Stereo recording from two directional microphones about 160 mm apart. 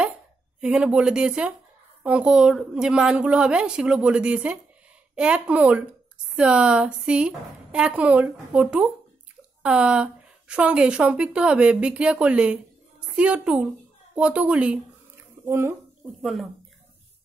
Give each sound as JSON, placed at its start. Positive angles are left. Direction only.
{"t": 0.6, "sound": "a woman's voice", "side_deg": -5}
{"t": 16.2, "sound": "a woman's voice", "side_deg": 0}